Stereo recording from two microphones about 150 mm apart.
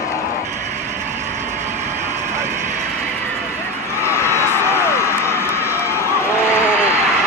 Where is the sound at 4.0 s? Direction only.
15° left (ahead or behind).